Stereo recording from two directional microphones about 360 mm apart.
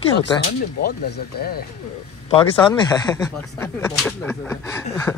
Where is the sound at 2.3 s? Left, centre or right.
Centre.